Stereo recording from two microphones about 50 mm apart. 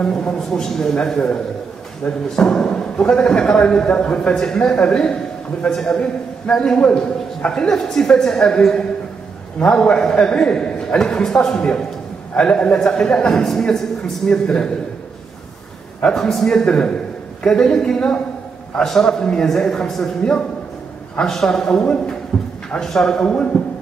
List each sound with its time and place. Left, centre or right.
0.0 s a man's voice: centre
16.1 s a man's voice: centre
21.8 s a man's voice: left
22.3 s a sound: centre
22.8 s a man's voice: centre